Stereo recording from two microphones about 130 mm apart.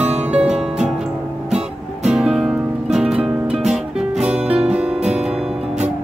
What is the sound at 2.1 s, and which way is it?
Music, 5° right (ahead or behind).